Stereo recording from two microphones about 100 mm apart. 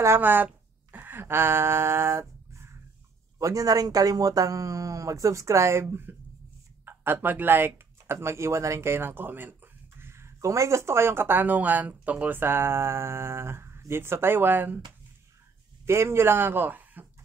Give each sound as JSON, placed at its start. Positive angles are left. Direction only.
{"t": 0.0, "sound": "speech", "side_deg": -25}
{"t": 0.9, "sound": "a sound", "side_deg": -20}
{"t": 3.3, "sound": "speech", "side_deg": -35}
{"t": 15.8, "sound": "speech", "side_deg": -25}